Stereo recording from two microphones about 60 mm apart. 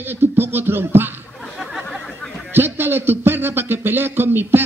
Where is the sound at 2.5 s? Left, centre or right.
Right.